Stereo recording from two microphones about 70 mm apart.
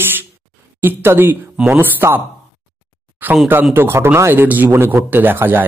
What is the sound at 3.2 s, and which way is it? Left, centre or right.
A man's voice, right.